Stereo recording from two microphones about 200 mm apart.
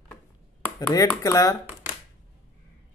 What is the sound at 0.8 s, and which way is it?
Speech, 10° left (ahead or behind).